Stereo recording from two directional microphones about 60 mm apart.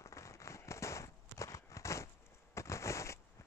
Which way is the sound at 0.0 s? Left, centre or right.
Left.